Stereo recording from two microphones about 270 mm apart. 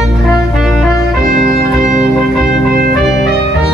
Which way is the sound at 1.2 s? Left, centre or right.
Right.